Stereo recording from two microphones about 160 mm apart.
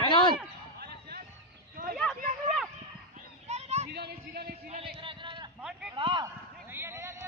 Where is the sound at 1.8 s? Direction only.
65° right (ahead or behind).